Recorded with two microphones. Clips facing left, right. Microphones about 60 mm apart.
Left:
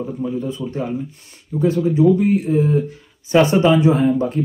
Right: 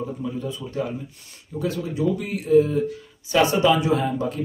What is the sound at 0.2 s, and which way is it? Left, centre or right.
Speech, left.